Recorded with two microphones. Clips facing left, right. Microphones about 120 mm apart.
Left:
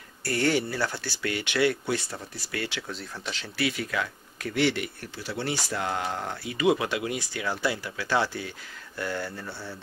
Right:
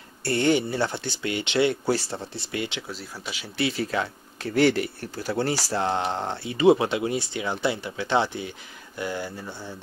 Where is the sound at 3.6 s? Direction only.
30° right (ahead or behind).